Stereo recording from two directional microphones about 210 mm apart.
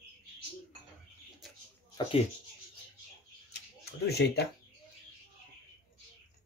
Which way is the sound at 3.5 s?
50° left (ahead or behind).